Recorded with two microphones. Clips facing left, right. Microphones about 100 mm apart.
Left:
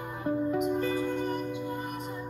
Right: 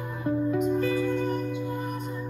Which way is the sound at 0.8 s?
30° left (ahead or behind).